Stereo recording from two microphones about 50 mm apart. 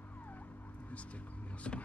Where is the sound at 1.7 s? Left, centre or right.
Left.